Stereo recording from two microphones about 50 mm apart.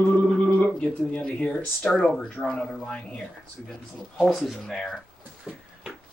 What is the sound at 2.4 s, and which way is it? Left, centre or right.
Speech, centre.